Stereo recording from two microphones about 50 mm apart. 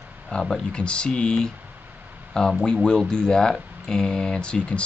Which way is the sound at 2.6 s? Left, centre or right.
Centre.